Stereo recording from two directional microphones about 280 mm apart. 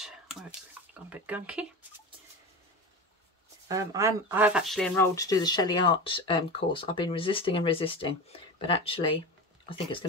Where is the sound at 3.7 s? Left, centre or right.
Centre.